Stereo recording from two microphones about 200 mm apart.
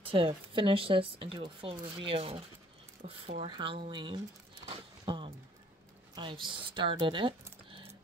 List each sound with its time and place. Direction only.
0.0 s speech: 25° right (ahead or behind)
4.6 s a sound: 20° right (ahead or behind)
6.2 s speech: 25° right (ahead or behind)